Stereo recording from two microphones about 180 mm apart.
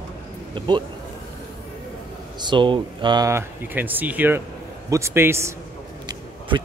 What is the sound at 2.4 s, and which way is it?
Speech, 25° right (ahead or behind).